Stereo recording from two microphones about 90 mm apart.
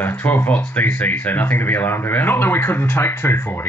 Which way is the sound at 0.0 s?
20° left (ahead or behind).